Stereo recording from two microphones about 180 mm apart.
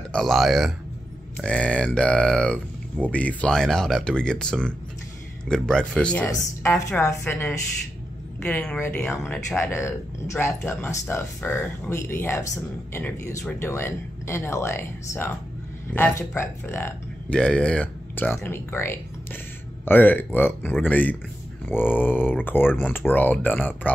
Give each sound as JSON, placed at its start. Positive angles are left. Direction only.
{"t": 0.1, "sound": "speech", "side_deg": 0}